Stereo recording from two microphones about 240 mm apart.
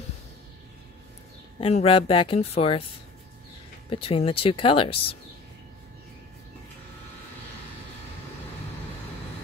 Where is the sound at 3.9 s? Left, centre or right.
Left.